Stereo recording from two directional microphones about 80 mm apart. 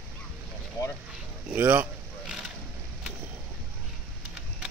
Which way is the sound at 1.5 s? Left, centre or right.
Right.